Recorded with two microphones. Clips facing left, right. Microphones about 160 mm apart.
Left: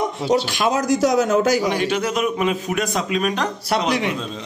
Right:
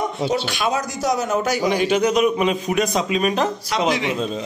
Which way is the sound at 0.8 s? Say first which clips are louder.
Left 5 dB; 90° left.